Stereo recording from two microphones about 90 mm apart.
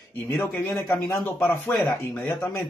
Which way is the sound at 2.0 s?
15° left (ahead or behind).